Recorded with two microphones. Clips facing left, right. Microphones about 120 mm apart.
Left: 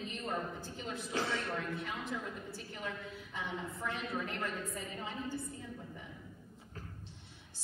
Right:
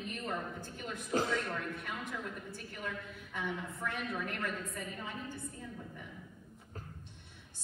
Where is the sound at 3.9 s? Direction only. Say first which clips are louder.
Even; 55° right (ahead or behind).